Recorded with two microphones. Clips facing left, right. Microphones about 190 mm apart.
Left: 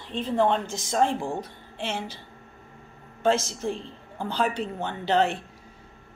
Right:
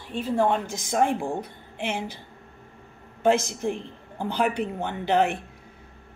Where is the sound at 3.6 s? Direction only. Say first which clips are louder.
Right 2 dB; 15° right (ahead or behind).